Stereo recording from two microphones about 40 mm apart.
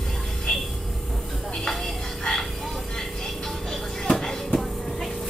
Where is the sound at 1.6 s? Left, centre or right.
Centre.